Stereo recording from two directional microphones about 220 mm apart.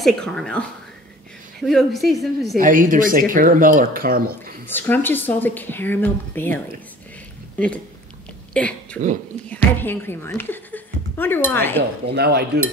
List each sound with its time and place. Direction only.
0.0 s speech: centre (ahead or behind)
2.5 s speech: 40° right (ahead or behind)
4.7 s a woman's voice: 10° left (ahead or behind)
12.1 s cutlery: 50° right (ahead or behind)